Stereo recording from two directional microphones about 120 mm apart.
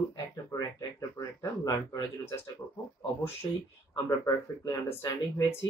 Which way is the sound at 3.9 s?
25° left (ahead or behind).